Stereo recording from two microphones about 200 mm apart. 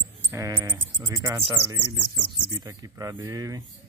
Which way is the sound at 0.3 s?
15° right (ahead or behind).